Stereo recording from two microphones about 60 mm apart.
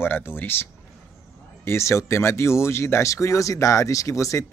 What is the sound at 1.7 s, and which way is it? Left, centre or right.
Speech, left.